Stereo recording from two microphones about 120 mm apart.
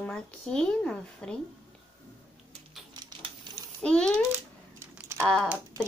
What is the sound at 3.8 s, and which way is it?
Speech, 10° left (ahead or behind).